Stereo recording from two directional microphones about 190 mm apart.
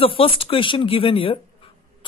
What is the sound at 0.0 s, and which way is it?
Speech, 30° left (ahead or behind).